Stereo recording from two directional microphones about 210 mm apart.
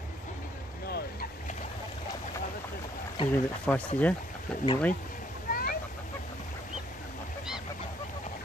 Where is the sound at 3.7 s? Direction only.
5° left (ahead or behind).